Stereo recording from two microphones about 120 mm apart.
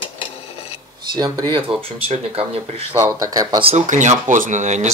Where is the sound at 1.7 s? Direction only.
50° right (ahead or behind).